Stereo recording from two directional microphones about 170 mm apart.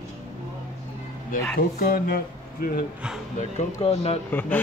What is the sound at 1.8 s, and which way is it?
Speech, 60° left (ahead or behind).